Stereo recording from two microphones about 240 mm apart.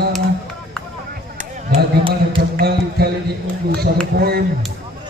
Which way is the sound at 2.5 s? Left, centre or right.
Right.